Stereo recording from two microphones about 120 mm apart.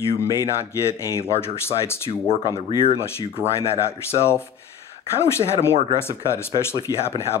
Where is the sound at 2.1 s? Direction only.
55° left (ahead or behind).